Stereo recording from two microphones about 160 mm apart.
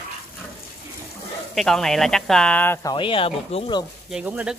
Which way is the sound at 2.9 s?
30° left (ahead or behind).